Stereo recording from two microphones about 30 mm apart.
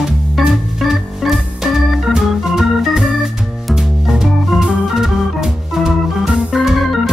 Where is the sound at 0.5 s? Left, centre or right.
Centre.